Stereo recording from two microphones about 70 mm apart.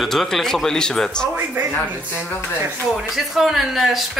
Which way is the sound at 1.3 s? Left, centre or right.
Right.